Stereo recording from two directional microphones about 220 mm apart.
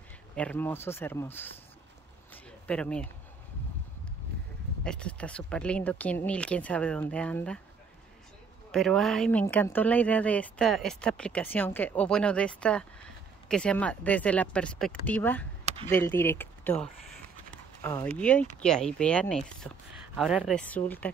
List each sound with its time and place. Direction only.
0.4 s speech: 5° left (ahead or behind)
2.3 s a sound: 5° left (ahead or behind)
4.8 s a woman's voice: 5° left (ahead or behind)
8.7 s a woman's voice: centre (ahead or behind)